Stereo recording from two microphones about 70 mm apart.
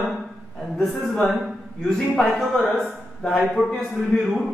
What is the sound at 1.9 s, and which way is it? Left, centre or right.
Speech, centre.